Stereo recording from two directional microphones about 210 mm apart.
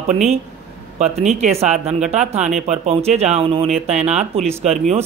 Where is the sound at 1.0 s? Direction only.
Centre (ahead or behind).